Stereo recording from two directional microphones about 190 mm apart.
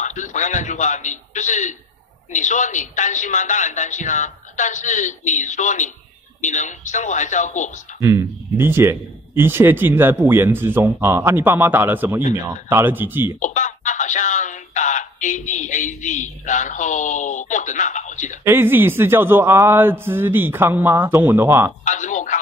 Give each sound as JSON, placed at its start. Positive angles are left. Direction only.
{"t": 0.0, "sound": "speech", "side_deg": 40}
{"t": 8.0, "sound": "speech", "side_deg": -15}
{"t": 13.4, "sound": "speech", "side_deg": 40}
{"t": 18.4, "sound": "speech", "side_deg": -10}
{"t": 21.8, "sound": "speech", "side_deg": 40}